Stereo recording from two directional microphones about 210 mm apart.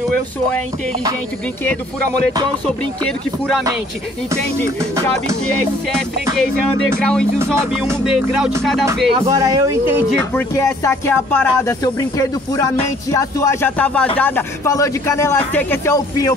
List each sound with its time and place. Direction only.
2.6 s speech: 5° left (ahead or behind)
7.0 s speech: 5° left (ahead or behind)
9.1 s speech: 15° right (ahead or behind)
10.3 s speech: 15° left (ahead or behind)